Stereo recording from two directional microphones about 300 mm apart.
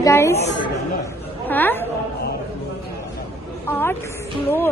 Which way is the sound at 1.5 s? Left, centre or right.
Centre.